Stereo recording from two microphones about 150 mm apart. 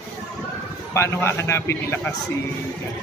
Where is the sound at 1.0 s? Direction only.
20° left (ahead or behind).